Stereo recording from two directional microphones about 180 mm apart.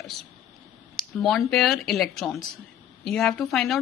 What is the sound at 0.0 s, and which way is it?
A woman's voice, centre (ahead or behind).